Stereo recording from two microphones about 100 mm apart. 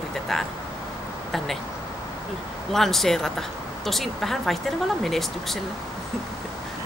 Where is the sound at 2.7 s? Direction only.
5° left (ahead or behind).